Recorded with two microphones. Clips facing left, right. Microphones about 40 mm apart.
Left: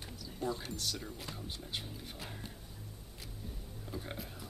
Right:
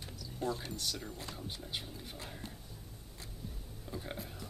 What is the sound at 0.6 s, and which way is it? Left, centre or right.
Speech, centre.